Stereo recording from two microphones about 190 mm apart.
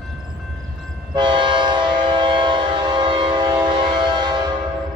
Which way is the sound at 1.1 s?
25° right (ahead or behind).